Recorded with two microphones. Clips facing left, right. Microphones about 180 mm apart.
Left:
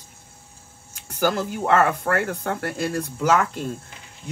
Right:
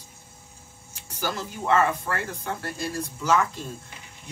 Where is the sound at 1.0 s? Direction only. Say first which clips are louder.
Left 8 dB; 55° left (ahead or behind).